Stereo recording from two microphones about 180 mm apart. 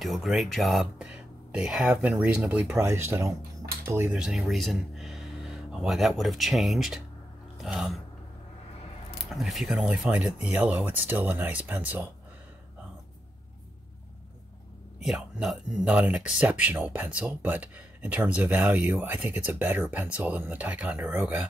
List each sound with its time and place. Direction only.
0.0 s speech: centre (ahead or behind)
9.2 s speech: centre (ahead or behind)
15.0 s speech: centre (ahead or behind)